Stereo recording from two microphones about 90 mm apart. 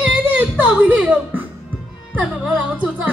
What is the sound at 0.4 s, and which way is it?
A woman's voice, 15° right (ahead or behind).